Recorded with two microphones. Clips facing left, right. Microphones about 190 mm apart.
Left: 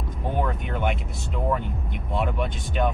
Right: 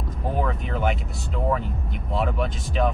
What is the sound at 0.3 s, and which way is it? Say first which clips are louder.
Vehicle: right 1 dB; centre (ahead or behind).